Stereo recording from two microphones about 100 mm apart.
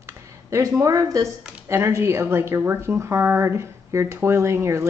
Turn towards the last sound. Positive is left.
turn(degrees=-30)  # may be behind; listen again after turning